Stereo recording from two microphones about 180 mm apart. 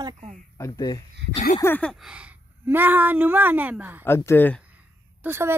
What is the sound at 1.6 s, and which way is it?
Speech, 10° left (ahead or behind).